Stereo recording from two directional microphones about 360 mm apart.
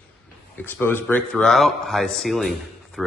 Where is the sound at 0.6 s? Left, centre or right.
Centre.